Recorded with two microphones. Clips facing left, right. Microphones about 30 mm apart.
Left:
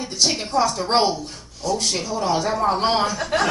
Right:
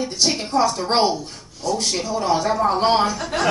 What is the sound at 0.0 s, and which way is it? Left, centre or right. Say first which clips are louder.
Speech: right 1 dB; centre.